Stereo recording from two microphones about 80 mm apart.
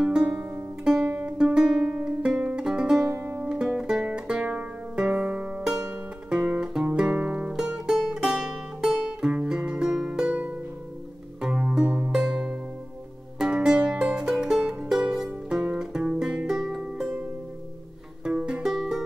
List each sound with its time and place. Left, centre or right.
0.0 s music: centre
3.1 s music: right
3.4 s music: centre
6.3 s guitar: right
6.6 s music: centre
9.3 s music: centre
11.4 s music: centre
18.2 s music: centre